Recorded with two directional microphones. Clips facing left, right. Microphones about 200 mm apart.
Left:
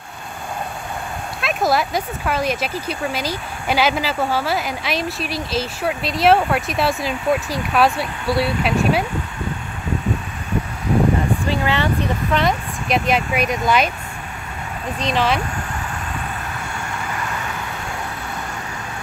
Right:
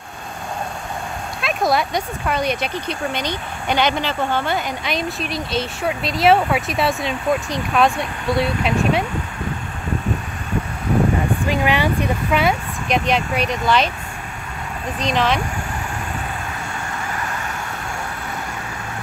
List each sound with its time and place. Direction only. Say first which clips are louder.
1.4 s speech: even; centre (ahead or behind)
11.4 s speech: right 1 dB; 15° right (ahead or behind); by 13.8 s 10° left (ahead or behind)
15.0 s speech: even; centre (ahead or behind)